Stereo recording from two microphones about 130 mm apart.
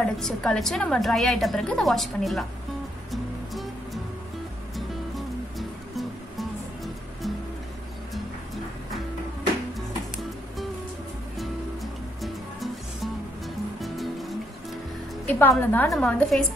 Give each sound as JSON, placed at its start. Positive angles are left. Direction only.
{"t": 0.0, "sound": "a woman's voice", "side_deg": 5}
{"t": 3.1, "sound": "music", "side_deg": 0}
{"t": 9.8, "sound": "music", "side_deg": 0}
{"t": 15.2, "sound": "music", "side_deg": 15}
{"t": 15.6, "sound": "a woman's voice", "side_deg": 15}